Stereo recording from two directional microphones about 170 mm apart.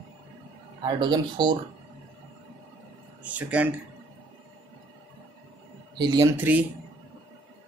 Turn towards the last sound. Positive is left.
turn(degrees=-10)  # may be behind; listen again after turning